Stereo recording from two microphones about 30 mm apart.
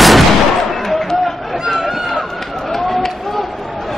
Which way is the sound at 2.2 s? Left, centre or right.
Centre.